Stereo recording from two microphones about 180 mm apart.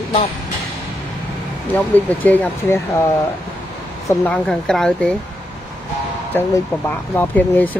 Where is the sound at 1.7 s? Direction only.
10° left (ahead or behind).